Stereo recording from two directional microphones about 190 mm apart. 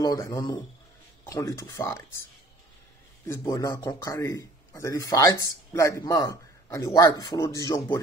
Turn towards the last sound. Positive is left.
turn(degrees=15)  # may be behind; listen again after turning